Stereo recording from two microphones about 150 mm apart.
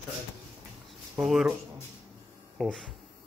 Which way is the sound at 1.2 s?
Centre (ahead or behind).